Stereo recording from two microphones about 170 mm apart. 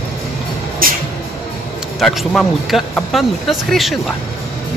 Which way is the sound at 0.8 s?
55° right (ahead or behind).